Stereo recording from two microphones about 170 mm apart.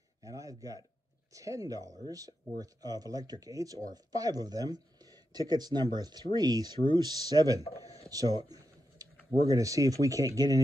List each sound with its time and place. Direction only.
0.2 s a sound: 20° right (ahead or behind)
1.3 s speech: 20° right (ahead or behind)
8.0 s computer keyboard: 20° right (ahead or behind)
9.5 s speech: 20° right (ahead or behind)